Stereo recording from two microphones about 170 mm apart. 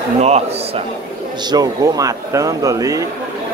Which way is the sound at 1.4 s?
25° right (ahead or behind).